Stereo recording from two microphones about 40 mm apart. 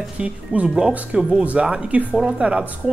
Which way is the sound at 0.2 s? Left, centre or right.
Right.